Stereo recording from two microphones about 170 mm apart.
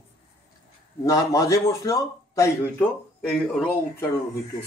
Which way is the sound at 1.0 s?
20° left (ahead or behind).